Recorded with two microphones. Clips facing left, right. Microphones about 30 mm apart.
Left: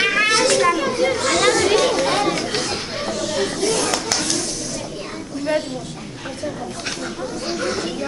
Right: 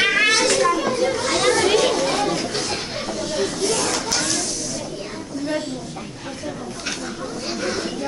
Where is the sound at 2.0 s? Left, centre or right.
Left.